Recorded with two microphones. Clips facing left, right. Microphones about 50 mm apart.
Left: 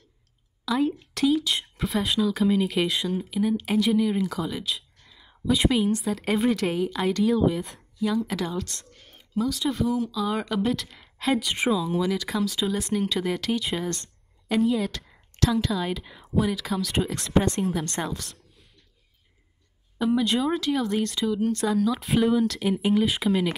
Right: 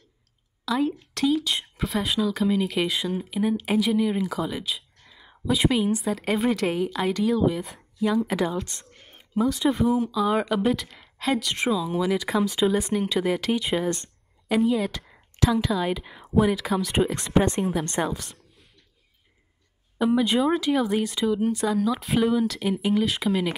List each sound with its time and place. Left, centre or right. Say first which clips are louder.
0.7 s a woman's voice: even; centre
5.5 s speech: even; centre
8.9 s a sound: right 2 dB; right
9.5 s a woman's voice: right 4 dB; centre
12.1 s a woman's voice: right 3 dB; centre
20.0 s speech: right 2 dB; centre